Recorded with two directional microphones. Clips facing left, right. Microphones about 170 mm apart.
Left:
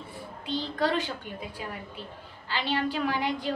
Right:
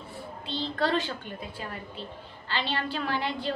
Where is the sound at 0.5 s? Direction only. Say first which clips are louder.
Even; 10° left (ahead or behind).